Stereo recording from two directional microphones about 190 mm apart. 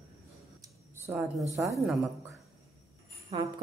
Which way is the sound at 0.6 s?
15° right (ahead or behind).